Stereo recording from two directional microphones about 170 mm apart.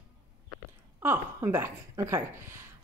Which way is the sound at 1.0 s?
15° right (ahead or behind).